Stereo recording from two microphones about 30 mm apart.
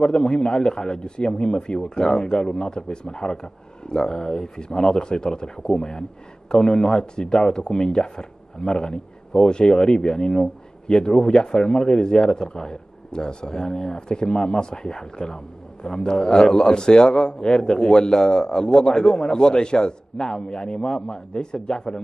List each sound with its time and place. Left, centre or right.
0.0 s speech: left